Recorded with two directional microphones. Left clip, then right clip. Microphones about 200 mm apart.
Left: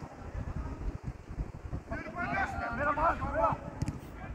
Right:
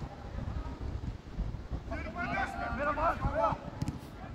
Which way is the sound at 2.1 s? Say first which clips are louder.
Left 1 dB; 30° right (ahead or behind).